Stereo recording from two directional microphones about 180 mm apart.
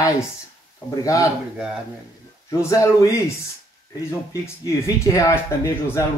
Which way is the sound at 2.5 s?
20° left (ahead or behind).